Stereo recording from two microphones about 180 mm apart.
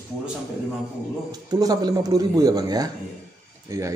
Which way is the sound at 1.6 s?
20° right (ahead or behind).